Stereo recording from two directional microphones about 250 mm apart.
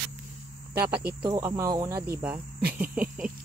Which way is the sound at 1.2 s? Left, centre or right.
Centre.